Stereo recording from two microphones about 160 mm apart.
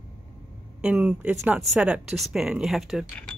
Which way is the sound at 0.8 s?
5° right (ahead or behind).